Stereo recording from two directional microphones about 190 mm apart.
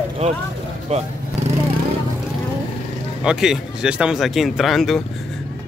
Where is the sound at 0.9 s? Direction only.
35° right (ahead or behind).